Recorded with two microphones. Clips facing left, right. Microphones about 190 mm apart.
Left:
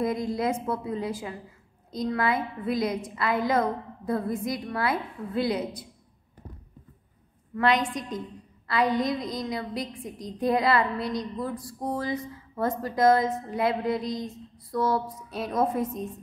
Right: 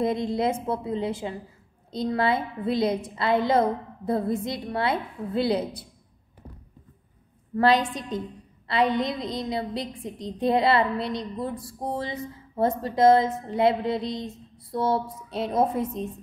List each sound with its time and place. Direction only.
0.0 s a woman's voice: 25° right (ahead or behind)
7.5 s a woman's voice: 30° right (ahead or behind)